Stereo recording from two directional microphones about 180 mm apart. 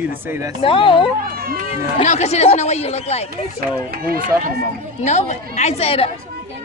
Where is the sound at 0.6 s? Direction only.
30° left (ahead or behind).